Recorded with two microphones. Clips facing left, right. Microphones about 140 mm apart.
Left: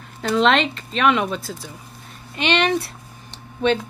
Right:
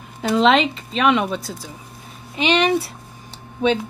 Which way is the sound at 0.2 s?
5° right (ahead or behind).